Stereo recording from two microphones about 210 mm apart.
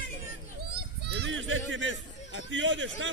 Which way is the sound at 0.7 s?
50° right (ahead or behind).